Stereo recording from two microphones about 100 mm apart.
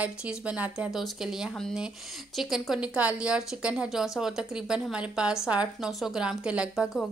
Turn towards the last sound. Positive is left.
turn(degrees=-10)  # may be behind; listen again after turning